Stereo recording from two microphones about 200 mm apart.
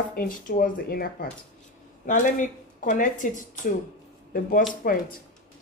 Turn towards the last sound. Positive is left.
turn(degrees=45)  # may be behind; listen again after turning